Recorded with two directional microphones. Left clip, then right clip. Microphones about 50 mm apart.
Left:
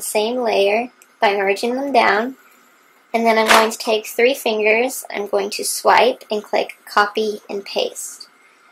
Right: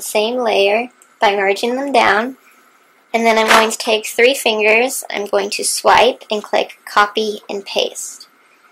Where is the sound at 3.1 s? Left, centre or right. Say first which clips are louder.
Right 2 dB; right.